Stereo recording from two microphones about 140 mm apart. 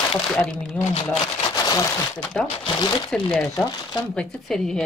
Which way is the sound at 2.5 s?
40° left (ahead or behind).